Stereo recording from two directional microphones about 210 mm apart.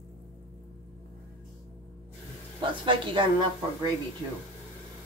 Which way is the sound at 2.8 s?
25° right (ahead or behind).